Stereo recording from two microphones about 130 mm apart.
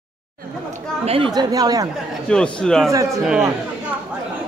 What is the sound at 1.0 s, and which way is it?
Speech, 45° right (ahead or behind).